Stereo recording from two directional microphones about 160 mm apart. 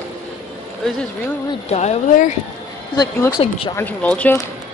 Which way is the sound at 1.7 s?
45° left (ahead or behind).